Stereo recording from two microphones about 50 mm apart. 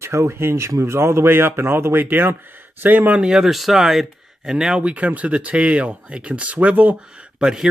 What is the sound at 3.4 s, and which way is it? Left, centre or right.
Speech, centre.